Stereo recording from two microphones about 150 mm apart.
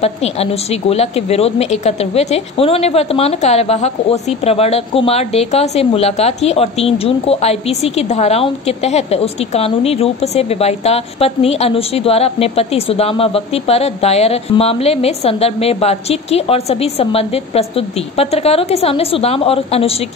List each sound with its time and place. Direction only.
0.0 s a woman's voice: 45° left (ahead or behind)